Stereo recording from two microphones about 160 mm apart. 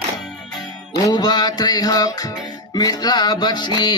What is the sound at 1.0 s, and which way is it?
Music, 25° left (ahead or behind).